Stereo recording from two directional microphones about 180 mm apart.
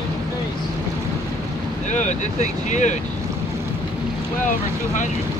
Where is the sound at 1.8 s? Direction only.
40° left (ahead or behind).